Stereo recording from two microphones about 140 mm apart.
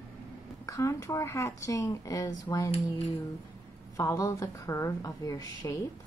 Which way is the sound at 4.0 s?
20° left (ahead or behind).